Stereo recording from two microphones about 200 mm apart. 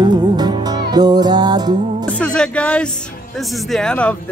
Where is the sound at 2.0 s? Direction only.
5° left (ahead or behind).